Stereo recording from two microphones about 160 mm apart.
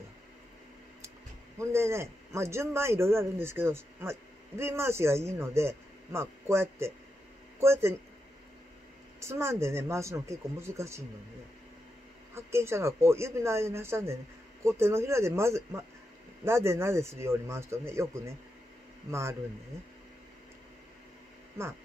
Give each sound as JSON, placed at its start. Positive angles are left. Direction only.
{"t": 1.6, "sound": "a man's voice", "side_deg": -15}
{"t": 9.2, "sound": "a man's voice", "side_deg": -15}
{"t": 12.4, "sound": "a man's voice", "side_deg": -15}